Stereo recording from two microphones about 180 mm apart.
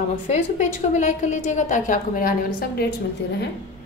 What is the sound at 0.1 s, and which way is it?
A woman's voice, 45° left (ahead or behind).